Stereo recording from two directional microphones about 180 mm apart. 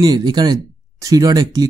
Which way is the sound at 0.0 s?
25° right (ahead or behind).